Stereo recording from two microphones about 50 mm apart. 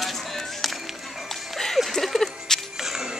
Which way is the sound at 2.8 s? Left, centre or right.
Centre.